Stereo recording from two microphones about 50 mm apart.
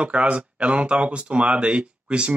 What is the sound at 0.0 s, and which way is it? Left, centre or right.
Speech, right.